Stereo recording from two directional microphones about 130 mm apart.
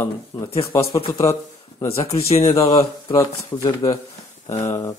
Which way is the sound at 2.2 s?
50° left (ahead or behind).